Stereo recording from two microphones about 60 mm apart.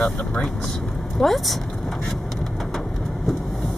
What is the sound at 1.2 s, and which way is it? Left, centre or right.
Speech, centre.